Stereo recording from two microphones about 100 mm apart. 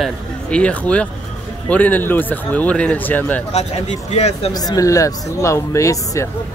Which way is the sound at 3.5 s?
90° left.